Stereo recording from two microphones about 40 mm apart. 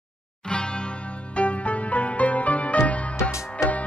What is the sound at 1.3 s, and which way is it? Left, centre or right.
Music, left.